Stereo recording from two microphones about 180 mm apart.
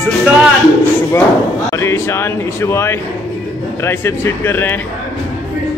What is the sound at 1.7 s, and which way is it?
Speech, 15° left (ahead or behind).